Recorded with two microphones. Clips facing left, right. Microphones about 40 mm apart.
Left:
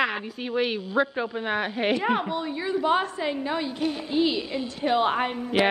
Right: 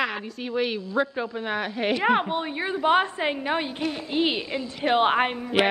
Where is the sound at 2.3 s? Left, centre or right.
Right.